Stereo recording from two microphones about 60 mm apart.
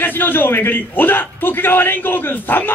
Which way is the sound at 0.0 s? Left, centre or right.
Left.